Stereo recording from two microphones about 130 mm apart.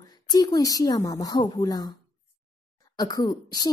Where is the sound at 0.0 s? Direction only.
30° left (ahead or behind).